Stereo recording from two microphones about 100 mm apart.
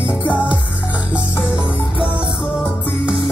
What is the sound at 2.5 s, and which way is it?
Music, 20° left (ahead or behind).